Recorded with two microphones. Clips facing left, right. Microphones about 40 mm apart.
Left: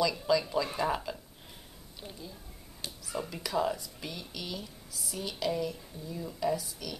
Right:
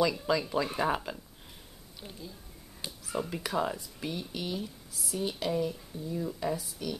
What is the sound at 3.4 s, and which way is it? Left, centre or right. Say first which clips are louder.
Speech: left 4 dB; centre.